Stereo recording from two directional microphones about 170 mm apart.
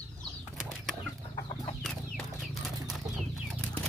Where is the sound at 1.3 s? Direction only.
30° left (ahead or behind).